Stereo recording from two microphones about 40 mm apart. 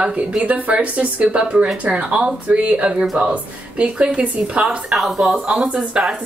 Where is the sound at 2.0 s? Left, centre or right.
Right.